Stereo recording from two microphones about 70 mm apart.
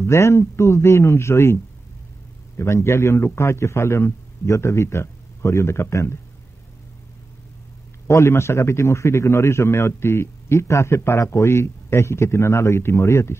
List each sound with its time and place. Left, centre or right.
0.0 s a man's voice: left
8.1 s a man's voice: left